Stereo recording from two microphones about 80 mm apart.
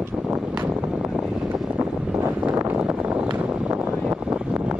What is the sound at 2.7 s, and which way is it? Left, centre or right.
Vehicle, centre.